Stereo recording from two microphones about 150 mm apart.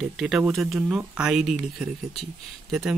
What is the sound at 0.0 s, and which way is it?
Speech, centre (ahead or behind).